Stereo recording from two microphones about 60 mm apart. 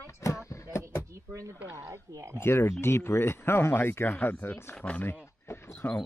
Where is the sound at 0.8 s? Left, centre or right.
Right.